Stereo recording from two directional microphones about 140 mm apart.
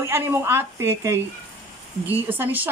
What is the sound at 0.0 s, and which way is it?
A woman's voice, 20° right (ahead or behind).